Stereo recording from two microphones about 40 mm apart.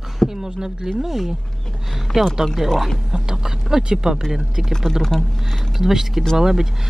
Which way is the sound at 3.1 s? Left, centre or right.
Centre.